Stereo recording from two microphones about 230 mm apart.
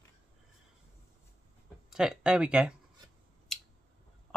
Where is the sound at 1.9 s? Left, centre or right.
Centre.